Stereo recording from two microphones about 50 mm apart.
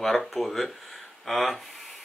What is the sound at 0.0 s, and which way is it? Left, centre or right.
Speech, centre.